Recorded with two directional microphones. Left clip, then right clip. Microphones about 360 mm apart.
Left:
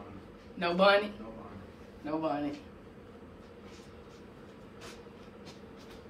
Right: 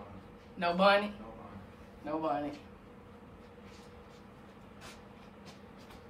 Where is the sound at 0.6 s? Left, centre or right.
Centre.